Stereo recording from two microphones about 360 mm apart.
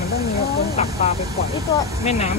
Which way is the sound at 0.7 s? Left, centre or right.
Centre.